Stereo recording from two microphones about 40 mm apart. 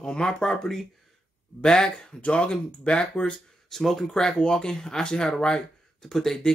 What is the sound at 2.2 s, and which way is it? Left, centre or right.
Speech, left.